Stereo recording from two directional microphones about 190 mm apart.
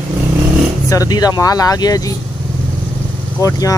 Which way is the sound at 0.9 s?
20° left (ahead or behind).